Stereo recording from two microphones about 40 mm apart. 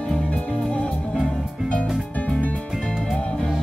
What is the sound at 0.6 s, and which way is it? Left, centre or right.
Music, left.